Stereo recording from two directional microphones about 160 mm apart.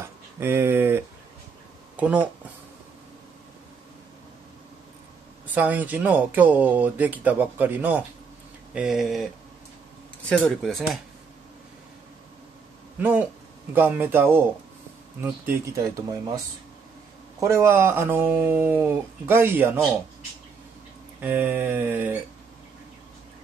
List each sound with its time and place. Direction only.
0.0 s speech: 15° right (ahead or behind)
5.5 s speech: 10° right (ahead or behind)
13.0 s speech: 10° right (ahead or behind)
17.4 s speech: 20° right (ahead or behind)
21.2 s speech: 10° right (ahead or behind)